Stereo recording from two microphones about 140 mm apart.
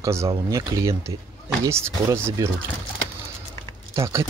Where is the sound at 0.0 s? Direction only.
20° right (ahead or behind).